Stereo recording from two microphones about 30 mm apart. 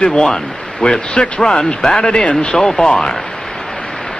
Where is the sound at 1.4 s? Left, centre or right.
Centre.